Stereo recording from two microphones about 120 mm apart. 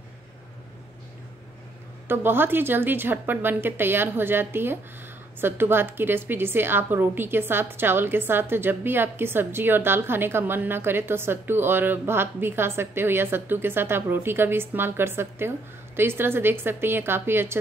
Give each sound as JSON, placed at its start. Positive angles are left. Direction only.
{"t": 2.0, "sound": "a woman's voice", "side_deg": -20}